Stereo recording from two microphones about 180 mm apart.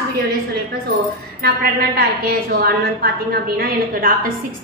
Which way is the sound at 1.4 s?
60° right (ahead or behind).